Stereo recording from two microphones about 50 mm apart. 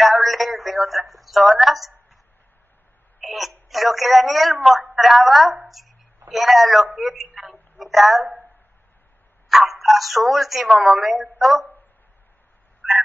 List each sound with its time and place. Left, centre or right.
0.0 s a sound: centre
3.2 s a woman's voice: centre
5.7 s a sound: centre
6.3 s a woman's voice: centre
9.5 s speech: centre
12.8 s fowl: right